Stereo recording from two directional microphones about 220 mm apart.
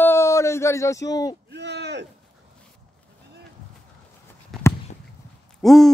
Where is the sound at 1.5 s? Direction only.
50° right (ahead or behind).